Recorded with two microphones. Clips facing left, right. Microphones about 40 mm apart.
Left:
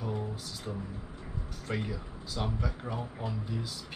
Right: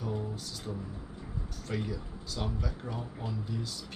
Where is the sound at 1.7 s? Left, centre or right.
Centre.